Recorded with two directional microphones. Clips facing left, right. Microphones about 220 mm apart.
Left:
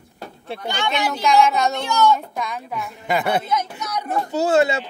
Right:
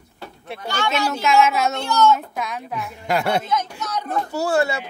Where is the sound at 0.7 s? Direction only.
15° left (ahead or behind).